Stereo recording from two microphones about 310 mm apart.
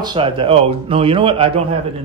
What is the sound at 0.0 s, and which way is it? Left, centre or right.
A man's voice, centre.